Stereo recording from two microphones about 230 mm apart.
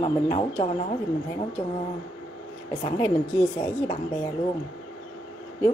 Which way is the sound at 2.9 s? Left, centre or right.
Centre.